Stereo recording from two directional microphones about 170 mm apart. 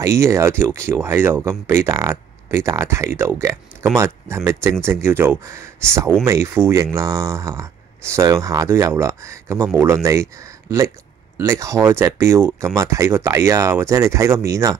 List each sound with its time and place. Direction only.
0.0 s speech: 15° right (ahead or behind)